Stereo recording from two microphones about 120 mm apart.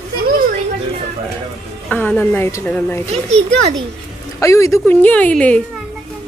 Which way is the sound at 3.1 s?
60° right (ahead or behind).